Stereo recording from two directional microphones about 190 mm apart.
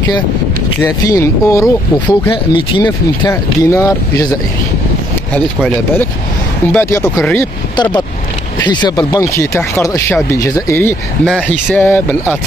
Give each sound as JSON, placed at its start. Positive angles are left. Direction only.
{"t": 0.7, "sound": "speech", "side_deg": 15}
{"t": 2.3, "sound": "speech", "side_deg": 25}
{"t": 7.7, "sound": "speech", "side_deg": 25}